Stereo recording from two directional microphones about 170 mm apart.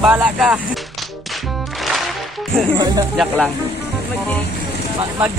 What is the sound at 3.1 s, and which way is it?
Music, 5° right (ahead or behind).